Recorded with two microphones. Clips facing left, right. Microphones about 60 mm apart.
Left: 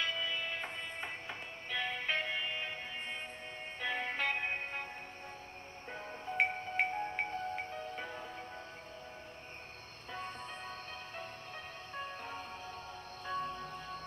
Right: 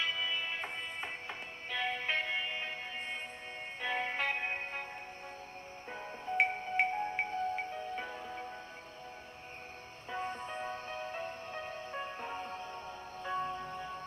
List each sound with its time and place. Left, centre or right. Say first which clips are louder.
0.0 s music: right 1 dB; centre
5.9 s music: right 2 dB; centre
10.1 s music: right 5 dB; centre